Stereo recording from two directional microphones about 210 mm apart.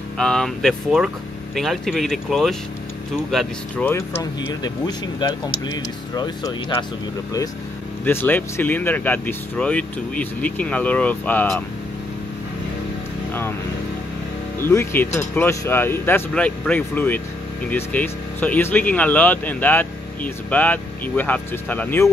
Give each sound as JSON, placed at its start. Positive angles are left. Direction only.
{"t": 0.2, "sound": "speech", "side_deg": 5}
{"t": 8.0, "sound": "speech", "side_deg": 10}
{"t": 13.3, "sound": "vehicle", "side_deg": 10}
{"t": 14.6, "sound": "speech", "side_deg": 10}